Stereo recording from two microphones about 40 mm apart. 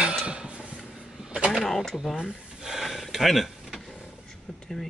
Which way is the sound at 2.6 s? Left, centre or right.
Centre.